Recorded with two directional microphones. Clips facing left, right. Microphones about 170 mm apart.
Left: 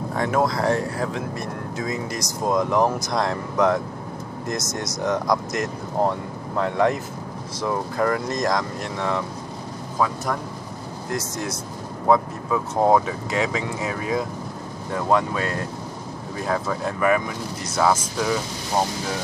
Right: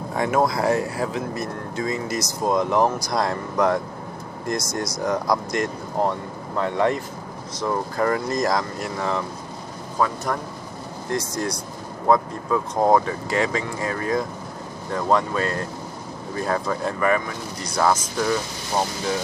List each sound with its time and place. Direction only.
0.2 s speech: 10° right (ahead or behind); by 18.4 s 10° left (ahead or behind)